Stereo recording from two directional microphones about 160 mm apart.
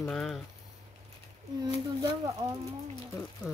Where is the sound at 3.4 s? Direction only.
5° right (ahead or behind).